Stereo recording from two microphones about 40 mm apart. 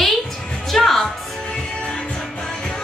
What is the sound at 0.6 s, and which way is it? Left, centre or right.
Music, centre.